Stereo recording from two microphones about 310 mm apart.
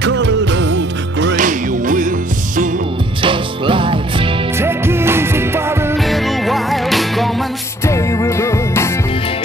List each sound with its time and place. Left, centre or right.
0.0 s music: right; by 8.9 s centre